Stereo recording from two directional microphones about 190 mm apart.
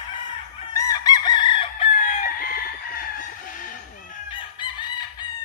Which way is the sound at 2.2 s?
50° left (ahead or behind).